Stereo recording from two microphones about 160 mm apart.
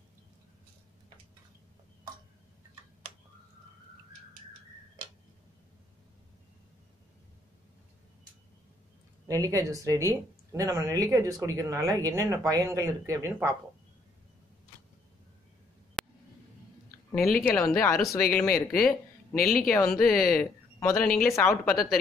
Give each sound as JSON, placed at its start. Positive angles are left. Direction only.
{"t": 9.3, "sound": "speech", "side_deg": -20}
{"t": 16.0, "sound": "a sound", "side_deg": 5}
{"t": 17.4, "sound": "speech", "side_deg": 10}
{"t": 19.3, "sound": "speech", "side_deg": 65}
{"t": 19.9, "sound": "speech", "side_deg": 0}